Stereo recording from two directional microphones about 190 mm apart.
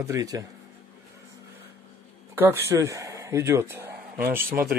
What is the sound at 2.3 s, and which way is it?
Speech, 10° right (ahead or behind).